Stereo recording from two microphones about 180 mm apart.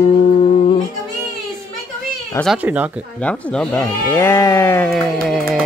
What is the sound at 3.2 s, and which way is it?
Music, 5° left (ahead or behind).